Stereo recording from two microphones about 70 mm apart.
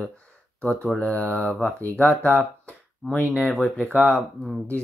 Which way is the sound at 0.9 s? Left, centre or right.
Left.